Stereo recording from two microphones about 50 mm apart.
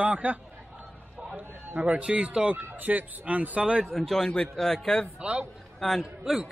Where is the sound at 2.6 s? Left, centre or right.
Right.